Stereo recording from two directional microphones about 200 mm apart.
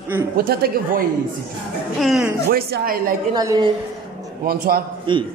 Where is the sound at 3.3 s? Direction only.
20° right (ahead or behind).